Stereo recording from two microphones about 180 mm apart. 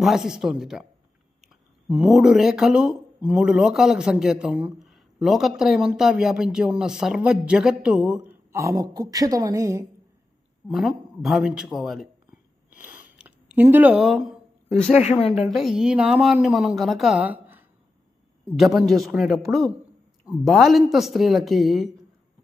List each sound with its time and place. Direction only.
0.0 s speech: centre (ahead or behind)
8.3 s a woman's voice: 15° right (ahead or behind)
10.7 s speech: centre (ahead or behind)
12.6 s a sound: 10° right (ahead or behind)
15.4 s speech: centre (ahead or behind)